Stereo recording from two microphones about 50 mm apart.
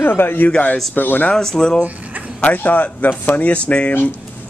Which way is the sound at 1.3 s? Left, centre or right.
Centre.